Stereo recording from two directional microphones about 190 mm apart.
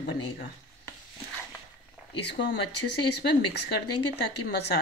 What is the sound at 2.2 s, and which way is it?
Speech, 60° left (ahead or behind).